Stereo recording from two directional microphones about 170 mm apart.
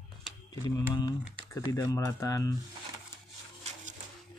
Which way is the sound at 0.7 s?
20° left (ahead or behind).